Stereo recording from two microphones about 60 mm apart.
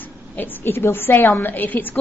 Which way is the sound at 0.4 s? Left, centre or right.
Left.